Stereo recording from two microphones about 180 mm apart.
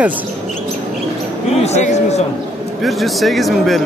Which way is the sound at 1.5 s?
35° left (ahead or behind).